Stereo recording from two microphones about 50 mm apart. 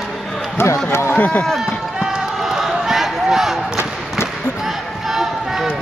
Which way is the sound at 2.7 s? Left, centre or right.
Centre.